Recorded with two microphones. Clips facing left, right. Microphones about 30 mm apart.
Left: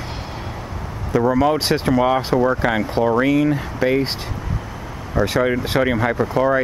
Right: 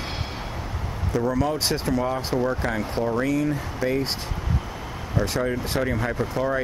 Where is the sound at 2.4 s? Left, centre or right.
Left.